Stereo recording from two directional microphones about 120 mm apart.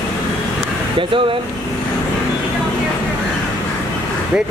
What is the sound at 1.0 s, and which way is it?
Speech, 45° right (ahead or behind).